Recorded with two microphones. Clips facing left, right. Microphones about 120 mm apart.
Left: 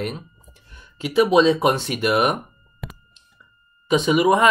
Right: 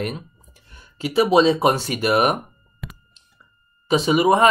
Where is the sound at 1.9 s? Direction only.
45° right (ahead or behind).